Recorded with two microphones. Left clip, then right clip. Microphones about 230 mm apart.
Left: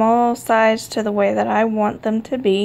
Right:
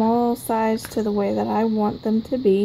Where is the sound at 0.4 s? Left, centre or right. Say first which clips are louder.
Left 7 dB; centre.